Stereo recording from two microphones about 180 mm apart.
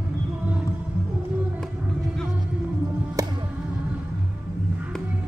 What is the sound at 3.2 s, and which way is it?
Music, 20° right (ahead or behind).